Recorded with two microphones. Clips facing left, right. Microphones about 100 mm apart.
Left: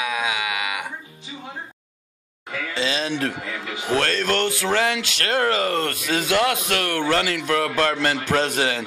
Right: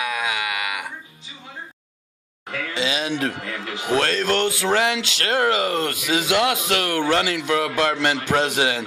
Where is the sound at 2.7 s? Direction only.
20° right (ahead or behind).